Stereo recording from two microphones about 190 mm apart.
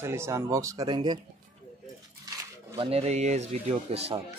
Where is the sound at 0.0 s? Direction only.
15° right (ahead or behind).